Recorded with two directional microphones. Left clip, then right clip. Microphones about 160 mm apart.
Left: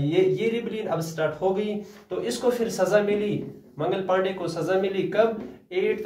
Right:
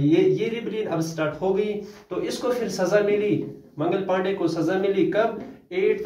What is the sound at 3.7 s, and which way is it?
Speech, 15° left (ahead or behind).